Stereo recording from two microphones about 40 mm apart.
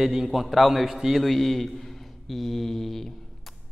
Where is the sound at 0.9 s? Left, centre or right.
Centre.